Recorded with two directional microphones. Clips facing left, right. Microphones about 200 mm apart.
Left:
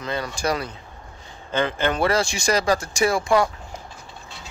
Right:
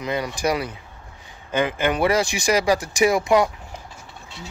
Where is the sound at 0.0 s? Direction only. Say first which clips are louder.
Right 2 dB; 15° right (ahead or behind).